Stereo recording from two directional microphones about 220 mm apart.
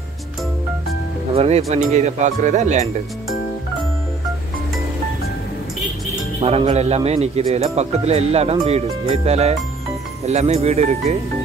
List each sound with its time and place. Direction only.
1.3 s speech: 25° right (ahead or behind)
6.4 s speech: 30° right (ahead or behind)